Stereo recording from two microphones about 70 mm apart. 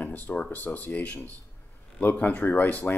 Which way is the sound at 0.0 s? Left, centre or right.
Left.